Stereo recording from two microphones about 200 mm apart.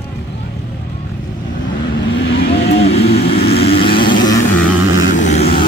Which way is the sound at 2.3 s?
50° left (ahead or behind).